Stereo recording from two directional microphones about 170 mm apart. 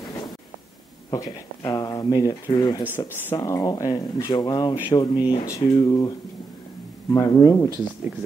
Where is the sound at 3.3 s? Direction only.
20° left (ahead or behind).